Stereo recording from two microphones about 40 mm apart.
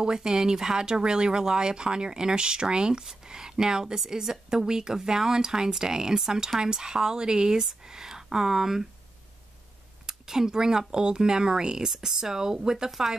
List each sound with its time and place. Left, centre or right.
0.0 s speech: centre
10.0 s speech: centre